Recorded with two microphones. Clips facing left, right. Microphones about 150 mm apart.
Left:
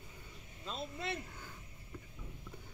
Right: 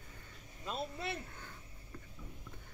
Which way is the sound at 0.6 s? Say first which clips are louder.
Right 2 dB; 10° right (ahead or behind).